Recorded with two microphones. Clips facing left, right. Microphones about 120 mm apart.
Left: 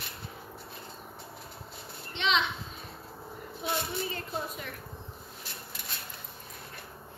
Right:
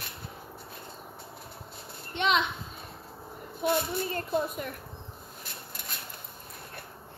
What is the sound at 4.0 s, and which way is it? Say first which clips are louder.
Speech: right 6 dB; 50° right (ahead or behind).